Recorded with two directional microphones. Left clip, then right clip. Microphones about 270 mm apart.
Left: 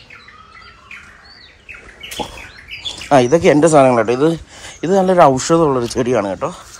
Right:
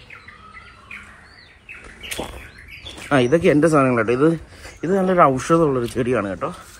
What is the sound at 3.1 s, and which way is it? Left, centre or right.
Speech, centre.